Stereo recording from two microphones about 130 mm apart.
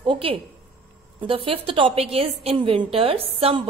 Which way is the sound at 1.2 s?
45° right (ahead or behind).